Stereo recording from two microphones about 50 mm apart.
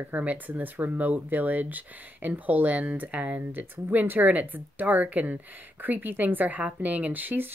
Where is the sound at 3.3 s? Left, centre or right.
Right.